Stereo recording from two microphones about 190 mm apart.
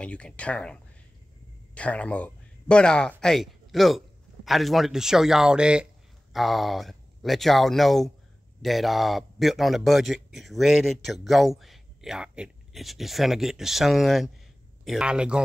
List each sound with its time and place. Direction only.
0.0 s speech: 5° left (ahead or behind)
1.8 s speech: 5° left (ahead or behind)